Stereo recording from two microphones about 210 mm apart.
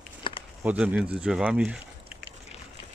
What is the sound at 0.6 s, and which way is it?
Speech, 5° right (ahead or behind).